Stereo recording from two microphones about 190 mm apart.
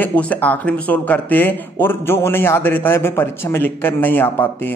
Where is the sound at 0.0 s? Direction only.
10° left (ahead or behind).